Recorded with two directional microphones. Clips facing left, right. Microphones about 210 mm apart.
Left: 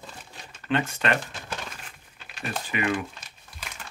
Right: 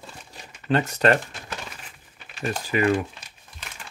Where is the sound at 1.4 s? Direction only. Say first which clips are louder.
Even; 5° right (ahead or behind).